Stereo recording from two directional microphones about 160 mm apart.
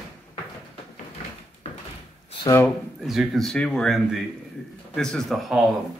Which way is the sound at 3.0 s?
Centre (ahead or behind).